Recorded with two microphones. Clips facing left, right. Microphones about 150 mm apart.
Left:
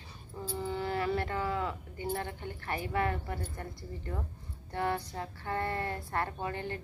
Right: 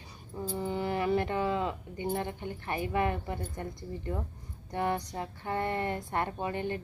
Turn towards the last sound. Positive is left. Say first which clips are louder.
# right 4 dB
turn(degrees=-20)  # may be behind; listen again after turning